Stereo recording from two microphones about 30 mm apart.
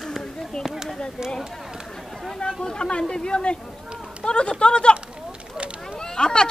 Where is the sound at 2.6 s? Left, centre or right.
Left.